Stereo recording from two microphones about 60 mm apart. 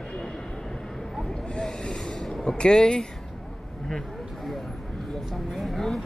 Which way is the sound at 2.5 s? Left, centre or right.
Centre.